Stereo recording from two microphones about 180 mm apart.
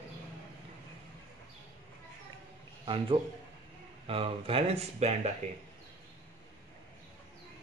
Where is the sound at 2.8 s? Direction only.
30° right (ahead or behind).